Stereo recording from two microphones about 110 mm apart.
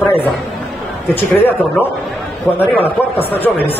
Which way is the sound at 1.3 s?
20° left (ahead or behind).